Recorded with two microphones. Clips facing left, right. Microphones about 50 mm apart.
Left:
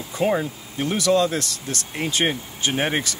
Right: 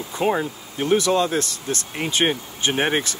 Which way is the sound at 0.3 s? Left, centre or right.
Right.